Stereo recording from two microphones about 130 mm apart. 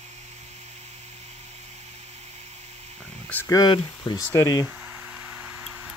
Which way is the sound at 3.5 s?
35° left (ahead or behind).